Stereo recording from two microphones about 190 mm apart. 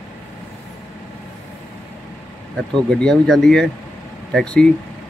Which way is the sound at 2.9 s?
5° left (ahead or behind).